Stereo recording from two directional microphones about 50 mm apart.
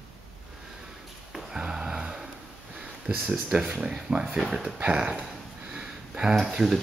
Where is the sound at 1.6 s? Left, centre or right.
Centre.